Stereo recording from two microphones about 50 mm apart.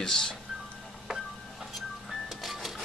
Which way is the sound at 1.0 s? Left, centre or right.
Centre.